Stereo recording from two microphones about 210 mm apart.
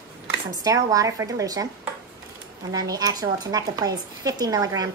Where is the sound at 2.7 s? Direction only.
15° right (ahead or behind).